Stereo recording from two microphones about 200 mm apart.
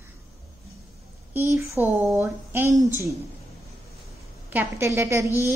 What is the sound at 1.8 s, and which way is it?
Speech, 10° right (ahead or behind).